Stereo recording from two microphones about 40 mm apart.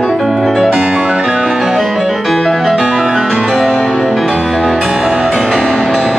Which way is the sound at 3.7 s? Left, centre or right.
Left.